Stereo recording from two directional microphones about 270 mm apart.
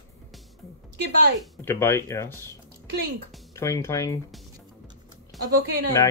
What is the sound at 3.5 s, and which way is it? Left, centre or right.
Speech, centre.